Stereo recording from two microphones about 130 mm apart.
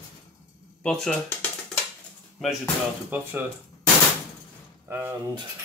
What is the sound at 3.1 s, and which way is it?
Speech, 15° right (ahead or behind).